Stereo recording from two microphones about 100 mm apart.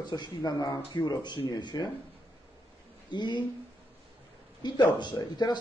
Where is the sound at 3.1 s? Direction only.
50° left (ahead or behind).